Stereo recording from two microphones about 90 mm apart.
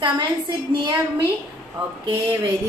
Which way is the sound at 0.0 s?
55° right (ahead or behind).